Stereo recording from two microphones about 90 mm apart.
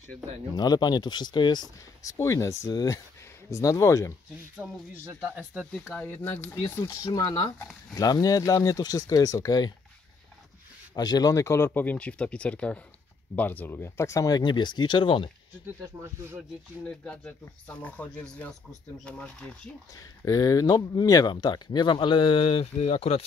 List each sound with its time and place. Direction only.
0.6 s speech: 50° left (ahead or behind)
2.0 s speech: 35° left (ahead or behind)
2.7 s speech: 45° left (ahead or behind)
4.6 s speech: 25° right (ahead or behind)
5.2 s speech: 15° right (ahead or behind)
6.0 s speech: 20° left (ahead or behind)
6.9 s speech: 45° left (ahead or behind)
11.0 s speech: 45° left (ahead or behind)
11.4 s speech: 25° left (ahead or behind)
14.4 s speech: 55° left (ahead or behind)
17.0 s speech: 15° left (ahead or behind)
20.2 s speech: 40° left (ahead or behind); by 22.6 s 70° left (ahead or behind)